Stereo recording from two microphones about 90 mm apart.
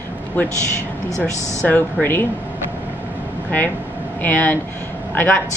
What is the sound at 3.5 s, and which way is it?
A woman's voice, 20° left (ahead or behind).